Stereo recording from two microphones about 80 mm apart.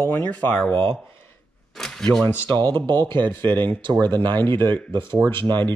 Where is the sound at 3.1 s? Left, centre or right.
Right.